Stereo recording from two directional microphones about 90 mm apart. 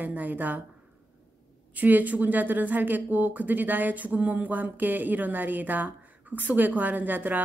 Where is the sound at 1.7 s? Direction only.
20° right (ahead or behind).